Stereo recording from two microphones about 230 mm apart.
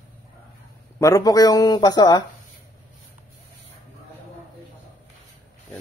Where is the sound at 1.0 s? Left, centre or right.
Centre.